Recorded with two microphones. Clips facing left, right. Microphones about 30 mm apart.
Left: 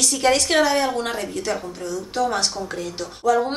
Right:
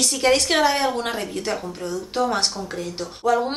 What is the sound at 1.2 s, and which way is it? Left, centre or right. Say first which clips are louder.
A woman's voice: left 1 dB; right.